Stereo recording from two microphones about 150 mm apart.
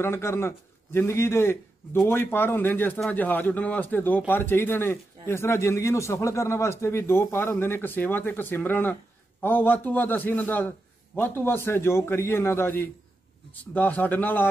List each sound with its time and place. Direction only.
0.0 s speech: 15° left (ahead or behind)